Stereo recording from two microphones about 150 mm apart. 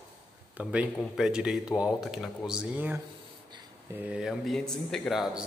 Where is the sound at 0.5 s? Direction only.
10° right (ahead or behind).